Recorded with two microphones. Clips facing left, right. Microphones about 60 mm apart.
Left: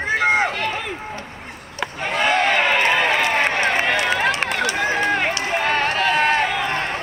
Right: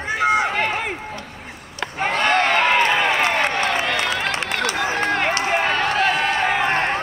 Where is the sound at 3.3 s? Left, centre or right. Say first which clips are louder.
Left 1 dB; left.